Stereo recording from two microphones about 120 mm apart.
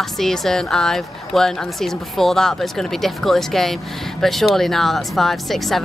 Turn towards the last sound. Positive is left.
turn(degrees=0)  # may be behind; listen again after turning